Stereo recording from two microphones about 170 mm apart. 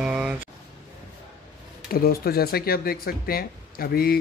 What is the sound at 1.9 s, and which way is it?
Speech, 60° left (ahead or behind).